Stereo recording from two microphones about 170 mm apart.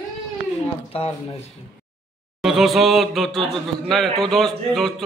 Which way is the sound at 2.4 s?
Centre (ahead or behind).